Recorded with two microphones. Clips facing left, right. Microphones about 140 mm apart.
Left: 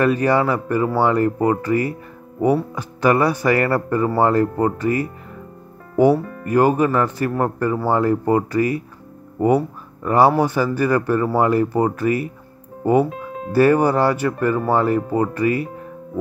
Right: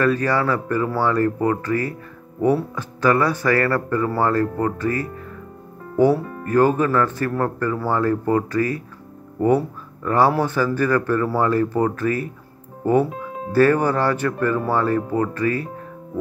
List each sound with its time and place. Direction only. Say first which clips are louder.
0.0 s speech: left 3 dB; 15° left (ahead or behind)
6.4 s speech: left 1 dB; 15° left (ahead or behind)
10.0 s speech: left 3 dB; 15° left (ahead or behind)
13.5 s speech: left 2 dB; 15° left (ahead or behind)